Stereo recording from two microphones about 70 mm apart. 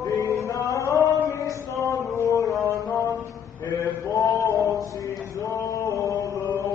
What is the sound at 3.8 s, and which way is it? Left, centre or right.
Male singing, left.